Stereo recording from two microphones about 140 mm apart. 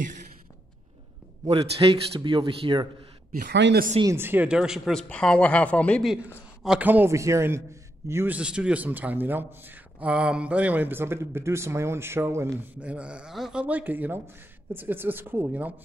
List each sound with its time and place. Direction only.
1.4 s a man's voice: 40° right (ahead or behind)
3.3 s speech: 90° right
4.0 s a man's voice: 20° right (ahead or behind); by 5.0 s 5° right (ahead or behind)
5.0 s a woman's voice: 10° left (ahead or behind)
6.6 s a man's voice: 10° right (ahead or behind)
12.9 s a man's voice: 10° right (ahead or behind)